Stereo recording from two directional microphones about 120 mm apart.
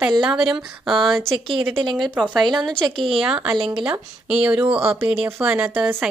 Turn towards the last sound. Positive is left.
turn(degrees=-15)  # may be behind; listen again after turning